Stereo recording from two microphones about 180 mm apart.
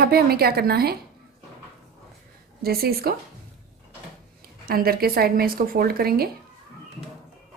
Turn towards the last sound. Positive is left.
turn(degrees=-55)  # may be behind; listen again after turning